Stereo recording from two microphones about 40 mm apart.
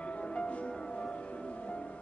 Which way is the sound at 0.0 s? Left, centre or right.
Left.